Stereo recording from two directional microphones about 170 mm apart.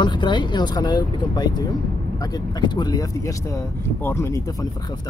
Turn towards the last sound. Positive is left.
turn(degrees=15)  # may be behind; listen again after turning